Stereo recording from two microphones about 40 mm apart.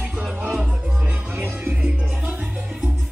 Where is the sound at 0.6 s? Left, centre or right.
Right.